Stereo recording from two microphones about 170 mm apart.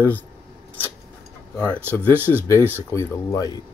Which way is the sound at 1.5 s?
10° left (ahead or behind).